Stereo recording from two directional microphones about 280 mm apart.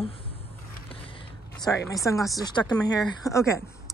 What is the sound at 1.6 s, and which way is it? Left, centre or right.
Speech, centre.